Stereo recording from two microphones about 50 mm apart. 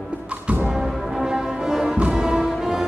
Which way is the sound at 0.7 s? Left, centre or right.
Centre.